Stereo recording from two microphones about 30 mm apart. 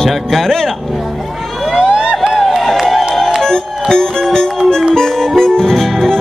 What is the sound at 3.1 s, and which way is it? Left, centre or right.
Music, centre.